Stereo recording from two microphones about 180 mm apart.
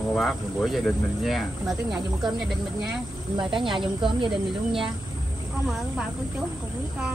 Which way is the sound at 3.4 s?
25° right (ahead or behind).